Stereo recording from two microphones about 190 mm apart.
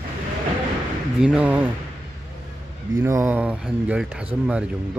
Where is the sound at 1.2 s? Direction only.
5° right (ahead or behind).